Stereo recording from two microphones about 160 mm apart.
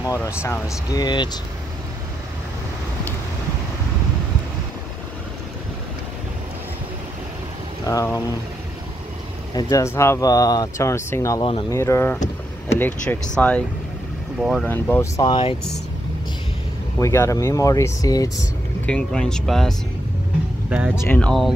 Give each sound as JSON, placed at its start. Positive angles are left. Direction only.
{"t": 0.0, "sound": "speech", "side_deg": 20}
{"t": 7.8, "sound": "speech", "side_deg": 20}
{"t": 9.5, "sound": "speech", "side_deg": 25}
{"t": 14.7, "sound": "speech", "side_deg": 15}
{"t": 17.0, "sound": "speech", "side_deg": 20}
{"t": 18.9, "sound": "speech", "side_deg": 5}
{"t": 20.9, "sound": "speech", "side_deg": 10}